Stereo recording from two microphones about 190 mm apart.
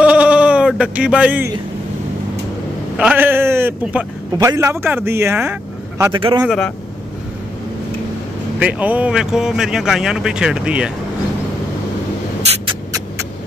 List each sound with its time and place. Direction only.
0.0 s bleat: 5° right (ahead or behind)
3.0 s speech: 10° right (ahead or behind)
6.1 s speech: 25° right (ahead or behind)
6.4 s speech: centre (ahead or behind)
8.5 s speech: 10° right (ahead or behind)